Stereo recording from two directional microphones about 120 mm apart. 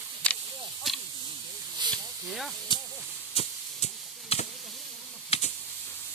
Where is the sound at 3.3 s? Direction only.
55° left (ahead or behind).